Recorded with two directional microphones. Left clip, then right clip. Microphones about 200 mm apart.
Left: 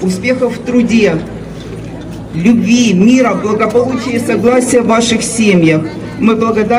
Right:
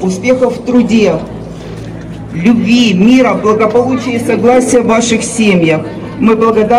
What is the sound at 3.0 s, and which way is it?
Speech, 25° left (ahead or behind).